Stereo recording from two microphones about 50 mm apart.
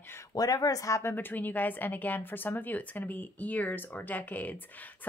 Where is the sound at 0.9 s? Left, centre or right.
Left.